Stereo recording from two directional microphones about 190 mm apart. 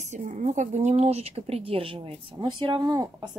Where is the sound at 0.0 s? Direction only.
40° right (ahead or behind).